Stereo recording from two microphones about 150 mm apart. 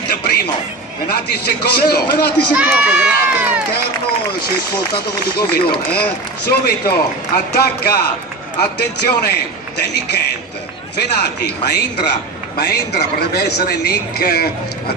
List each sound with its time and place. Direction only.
0.1 s a sound: 90° left
1.0 s a man's voice: 90° left
2.5 s speech: 10° right (ahead or behind)
4.3 s a man's voice: 90° left